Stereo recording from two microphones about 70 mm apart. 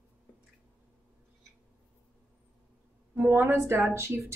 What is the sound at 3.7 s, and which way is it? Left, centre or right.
Speech, right.